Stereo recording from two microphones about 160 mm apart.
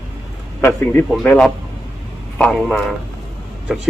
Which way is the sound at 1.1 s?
5° left (ahead or behind).